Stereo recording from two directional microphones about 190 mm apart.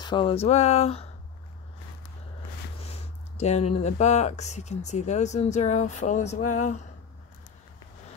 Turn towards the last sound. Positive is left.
turn(degrees=40)  # may be behind; listen again after turning